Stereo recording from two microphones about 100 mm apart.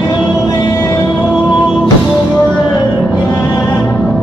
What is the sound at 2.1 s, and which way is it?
Music, 5° left (ahead or behind).